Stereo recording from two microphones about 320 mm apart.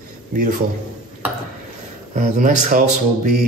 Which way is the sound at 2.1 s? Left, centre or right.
Right.